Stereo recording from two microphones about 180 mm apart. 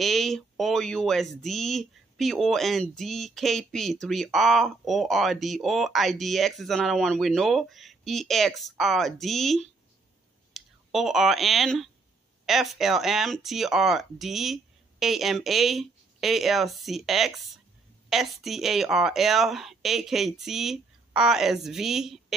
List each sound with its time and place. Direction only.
0.0 s speech: centre (ahead or behind)